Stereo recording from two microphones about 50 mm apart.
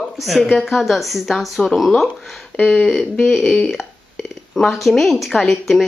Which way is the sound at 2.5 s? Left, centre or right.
Left.